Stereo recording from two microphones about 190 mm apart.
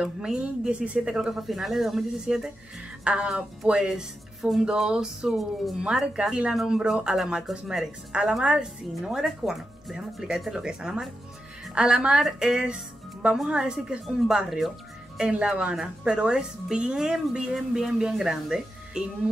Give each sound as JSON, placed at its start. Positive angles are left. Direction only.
{"t": 0.0, "sound": "speech", "side_deg": -5}